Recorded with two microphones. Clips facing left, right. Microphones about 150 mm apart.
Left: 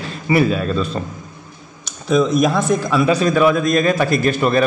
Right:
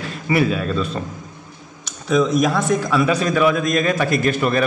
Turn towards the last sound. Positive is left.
turn(degrees=30)  # may be behind; listen again after turning